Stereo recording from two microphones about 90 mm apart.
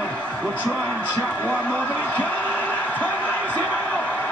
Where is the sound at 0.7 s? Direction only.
20° left (ahead or behind).